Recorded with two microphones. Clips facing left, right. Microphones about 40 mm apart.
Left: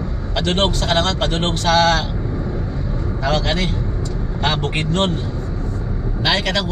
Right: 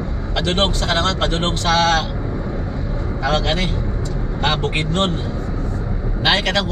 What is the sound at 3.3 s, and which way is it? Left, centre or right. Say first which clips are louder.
Speech: even; right.